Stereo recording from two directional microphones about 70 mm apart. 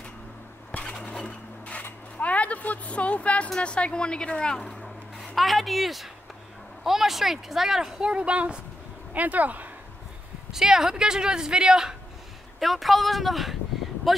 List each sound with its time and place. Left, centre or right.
0.7 s a sound: centre
2.1 s speech: centre; by 9.7 s right
10.5 s speech: centre